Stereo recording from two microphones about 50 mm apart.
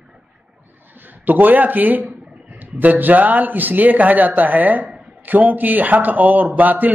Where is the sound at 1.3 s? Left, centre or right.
Right.